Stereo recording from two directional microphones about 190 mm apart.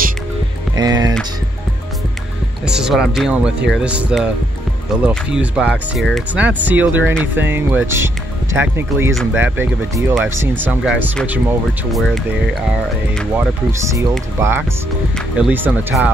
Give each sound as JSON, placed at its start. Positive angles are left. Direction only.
{"t": 0.7, "sound": "a sound", "side_deg": -20}
{"t": 2.6, "sound": "speech", "side_deg": -5}
{"t": 13.4, "sound": "speech", "side_deg": -15}
{"t": 15.1, "sound": "speech", "side_deg": -5}